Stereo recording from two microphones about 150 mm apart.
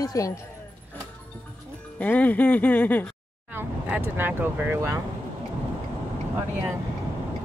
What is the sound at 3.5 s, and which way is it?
Speech, 15° right (ahead or behind).